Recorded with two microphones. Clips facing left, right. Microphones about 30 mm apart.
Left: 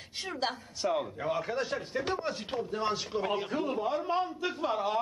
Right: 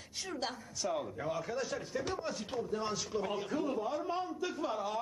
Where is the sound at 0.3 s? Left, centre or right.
Left.